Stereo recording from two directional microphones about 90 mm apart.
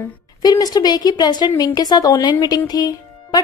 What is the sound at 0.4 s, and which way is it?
A woman's voice, 50° left (ahead or behind).